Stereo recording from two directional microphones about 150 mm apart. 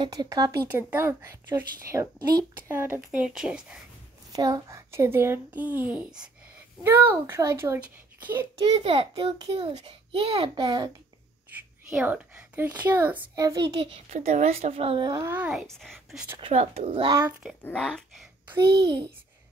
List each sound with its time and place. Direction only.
0.0 s a child's voice: 25° right (ahead or behind); by 3.8 s 5° right (ahead or behind)
4.3 s a child's voice: 25° right (ahead or behind)
8.8 s a child's voice: 40° right (ahead or behind)
11.5 s a woman's voice: 10° right (ahead or behind)
13.4 s speech: 25° right (ahead or behind)
13.7 s a child's voice: 40° right (ahead or behind)
15.2 s a child's voice: 10° right (ahead or behind)
15.6 s speech: 5° left (ahead or behind)
16.3 s a child's voice: 40° right (ahead or behind)
17.6 s speech: 5° left (ahead or behind)